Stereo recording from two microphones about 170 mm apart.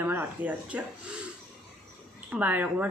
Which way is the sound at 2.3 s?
10° right (ahead or behind).